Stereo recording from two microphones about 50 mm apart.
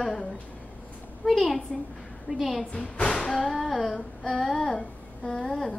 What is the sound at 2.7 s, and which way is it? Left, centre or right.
Music, centre.